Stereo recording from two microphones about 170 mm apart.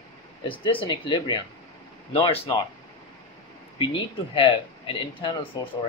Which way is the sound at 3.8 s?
30° left (ahead or behind).